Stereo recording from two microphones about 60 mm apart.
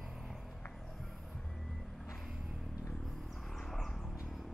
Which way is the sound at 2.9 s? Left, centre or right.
Centre.